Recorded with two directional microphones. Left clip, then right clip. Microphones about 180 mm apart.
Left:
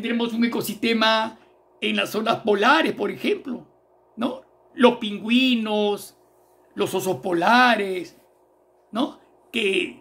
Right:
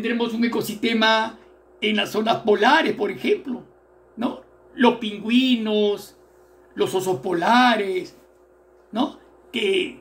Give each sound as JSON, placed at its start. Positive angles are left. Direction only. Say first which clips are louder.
{"t": 0.2, "sound": "speech", "louder": "right 1 dB", "side_deg": 60}
{"t": 4.7, "sound": "speech", "louder": "left 1 dB", "side_deg": 55}
{"t": 8.9, "sound": "a sound", "louder": "right 1 dB", "side_deg": 55}